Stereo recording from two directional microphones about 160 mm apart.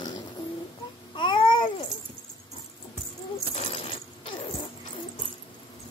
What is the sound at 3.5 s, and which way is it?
Sewing machine, 40° left (ahead or behind).